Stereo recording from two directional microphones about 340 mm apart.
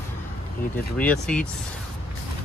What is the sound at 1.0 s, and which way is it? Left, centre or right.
Speech, centre.